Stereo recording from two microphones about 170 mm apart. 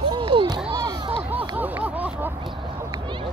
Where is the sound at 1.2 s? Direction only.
10° right (ahead or behind).